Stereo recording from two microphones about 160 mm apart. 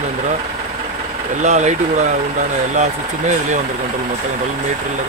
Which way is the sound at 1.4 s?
45° right (ahead or behind).